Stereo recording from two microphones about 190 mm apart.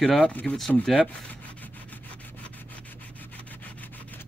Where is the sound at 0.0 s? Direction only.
Centre (ahead or behind).